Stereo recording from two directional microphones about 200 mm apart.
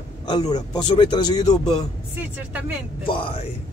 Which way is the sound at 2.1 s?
10° right (ahead or behind).